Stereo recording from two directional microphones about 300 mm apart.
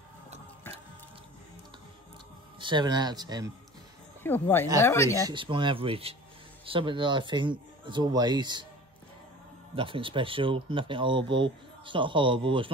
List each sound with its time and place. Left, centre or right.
2.6 s speech: centre
4.2 s speech: centre
5.2 s speech: centre
9.8 s speech: centre